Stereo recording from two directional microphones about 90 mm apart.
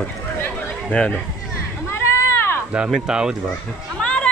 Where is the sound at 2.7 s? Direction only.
10° right (ahead or behind).